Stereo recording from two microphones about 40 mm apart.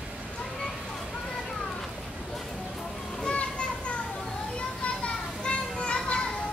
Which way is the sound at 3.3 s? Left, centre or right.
Left.